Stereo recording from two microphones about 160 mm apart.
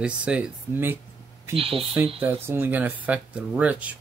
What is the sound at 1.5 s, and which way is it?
Speech, 35° right (ahead or behind).